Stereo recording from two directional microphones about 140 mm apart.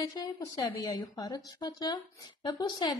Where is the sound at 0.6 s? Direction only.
30° left (ahead or behind).